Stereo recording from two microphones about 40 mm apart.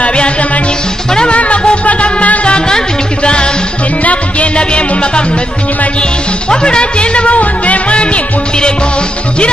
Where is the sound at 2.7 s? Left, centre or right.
Left.